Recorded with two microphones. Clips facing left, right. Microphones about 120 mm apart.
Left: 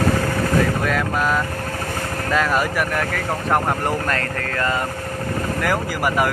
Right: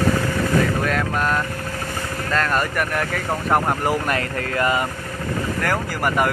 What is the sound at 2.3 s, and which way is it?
Speech, 5° left (ahead or behind).